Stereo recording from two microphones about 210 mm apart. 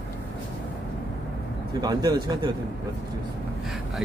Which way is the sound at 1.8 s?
20° right (ahead or behind).